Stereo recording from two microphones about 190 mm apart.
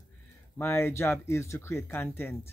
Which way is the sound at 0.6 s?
15° left (ahead or behind).